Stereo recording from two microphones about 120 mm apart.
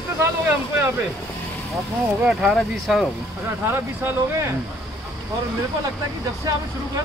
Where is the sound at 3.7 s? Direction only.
20° right (ahead or behind).